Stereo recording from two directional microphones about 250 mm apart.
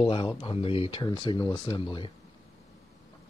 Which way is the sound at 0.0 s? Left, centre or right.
Left.